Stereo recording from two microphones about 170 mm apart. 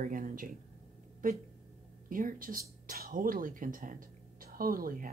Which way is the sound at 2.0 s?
55° right (ahead or behind).